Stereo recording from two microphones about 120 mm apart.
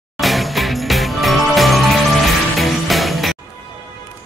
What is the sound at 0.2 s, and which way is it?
Music, centre (ahead or behind).